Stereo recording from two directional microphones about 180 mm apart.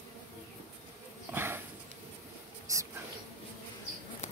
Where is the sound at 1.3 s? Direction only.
10° right (ahead or behind).